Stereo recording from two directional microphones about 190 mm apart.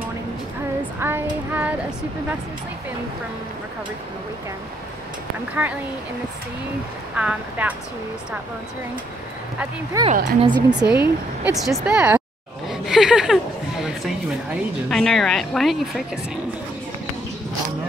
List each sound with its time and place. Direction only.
0.9 s child singing: 10° right (ahead or behind)
1.5 s a sound: 10° right (ahead or behind)
5.5 s a woman's voice: 10° right (ahead or behind)
7.2 s a woman's voice: 10° right (ahead or behind)
9.9 s a woman's voice: 15° right (ahead or behind)
10.8 s speech: 5° right (ahead or behind)
12.6 s a sound: centre (ahead or behind)
14.9 s speech: centre (ahead or behind)